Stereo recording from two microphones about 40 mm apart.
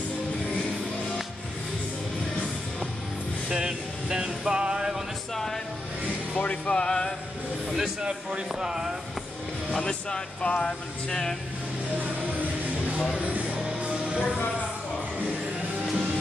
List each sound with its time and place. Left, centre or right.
3.5 s vehicle: centre
4.5 s music: centre
5.3 s speech: centre
6.3 s speech: left
6.7 s chant: left
8.0 s speech: right
9.8 s speech: left
12.0 s music: right
13.2 s speech: right
13.6 s music: right